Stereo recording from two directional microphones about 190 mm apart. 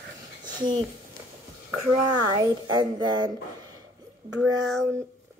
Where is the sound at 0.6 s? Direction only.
25° right (ahead or behind).